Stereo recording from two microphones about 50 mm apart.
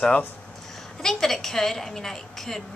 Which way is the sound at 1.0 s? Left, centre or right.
Centre.